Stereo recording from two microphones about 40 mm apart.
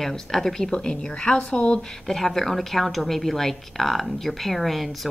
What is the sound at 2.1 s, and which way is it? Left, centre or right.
A woman's voice, centre.